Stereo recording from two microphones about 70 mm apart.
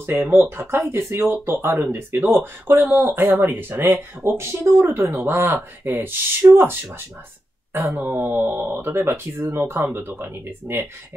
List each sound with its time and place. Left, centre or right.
0.0 s speech: right